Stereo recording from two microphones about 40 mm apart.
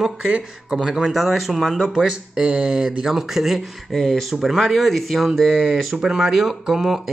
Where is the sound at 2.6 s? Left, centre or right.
Centre.